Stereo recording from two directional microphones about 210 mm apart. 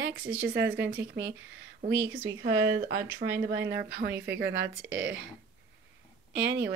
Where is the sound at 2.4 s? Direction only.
45° right (ahead or behind).